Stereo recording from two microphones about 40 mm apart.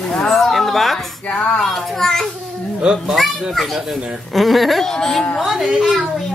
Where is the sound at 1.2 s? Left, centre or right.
Left.